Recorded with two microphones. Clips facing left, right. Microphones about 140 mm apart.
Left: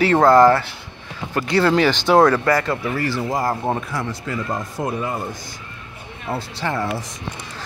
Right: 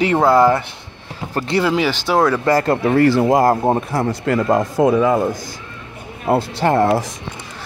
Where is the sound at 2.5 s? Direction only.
40° right (ahead or behind).